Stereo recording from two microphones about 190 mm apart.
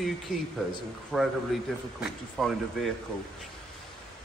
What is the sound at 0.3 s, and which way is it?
Speech, 45° left (ahead or behind).